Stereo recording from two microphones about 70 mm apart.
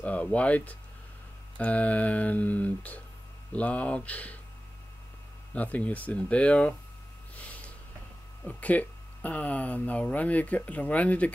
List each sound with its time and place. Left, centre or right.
0.0 s speech: centre
5.5 s speech: left
7.3 s snort: left
8.5 s speech: left